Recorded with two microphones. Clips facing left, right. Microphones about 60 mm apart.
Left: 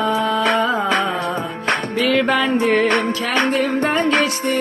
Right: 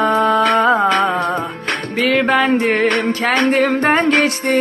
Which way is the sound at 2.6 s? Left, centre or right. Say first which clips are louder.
Even; right.